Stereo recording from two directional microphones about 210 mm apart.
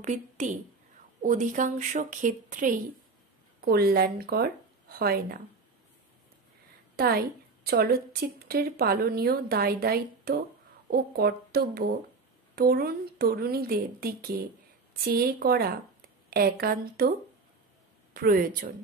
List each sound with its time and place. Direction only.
0.0 s a woman's voice: 35° right (ahead or behind)
7.0 s a woman's voice: 45° right (ahead or behind)
18.1 s speech: 45° right (ahead or behind)